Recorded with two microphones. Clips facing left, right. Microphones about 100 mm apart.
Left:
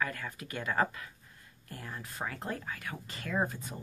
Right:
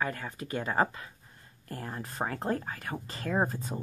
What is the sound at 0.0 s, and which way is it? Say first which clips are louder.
Speech: right 2 dB; 30° right (ahead or behind).